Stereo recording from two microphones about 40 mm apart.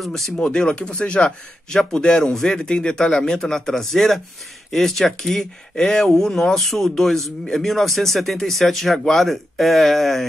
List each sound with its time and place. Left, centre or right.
0.4 s speech: left; by 10.2 s centre